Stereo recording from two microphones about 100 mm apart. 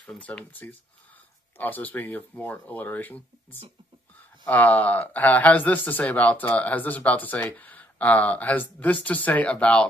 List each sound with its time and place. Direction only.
0.0 s speech: 10° left (ahead or behind)